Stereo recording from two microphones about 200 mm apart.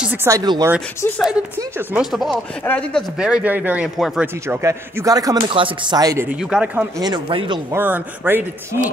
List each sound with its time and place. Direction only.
0.0 s speech: 10° right (ahead or behind)
0.7 s speech: 10° left (ahead or behind)
2.0 s speech: 5° right (ahead or behind)
7.0 s speech: 20° right (ahead or behind)
7.7 s speech: 10° right (ahead or behind)